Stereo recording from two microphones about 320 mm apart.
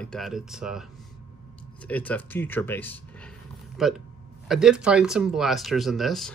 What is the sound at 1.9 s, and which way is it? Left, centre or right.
Speech, centre.